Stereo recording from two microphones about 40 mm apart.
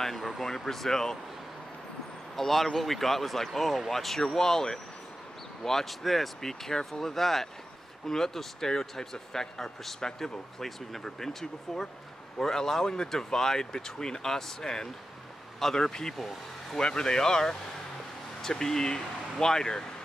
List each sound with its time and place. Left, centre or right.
0.0 s speech: centre
2.3 s speech: centre